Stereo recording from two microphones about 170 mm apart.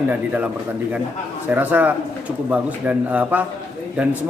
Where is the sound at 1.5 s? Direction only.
10° right (ahead or behind).